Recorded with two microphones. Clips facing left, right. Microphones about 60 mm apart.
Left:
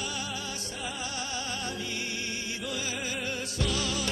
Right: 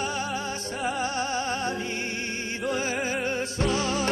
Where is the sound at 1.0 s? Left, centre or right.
Right.